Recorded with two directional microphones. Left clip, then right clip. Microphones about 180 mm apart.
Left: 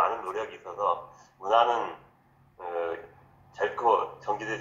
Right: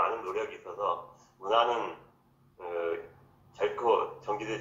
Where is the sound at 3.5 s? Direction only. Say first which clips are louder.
Left 3 dB; 40° left (ahead or behind).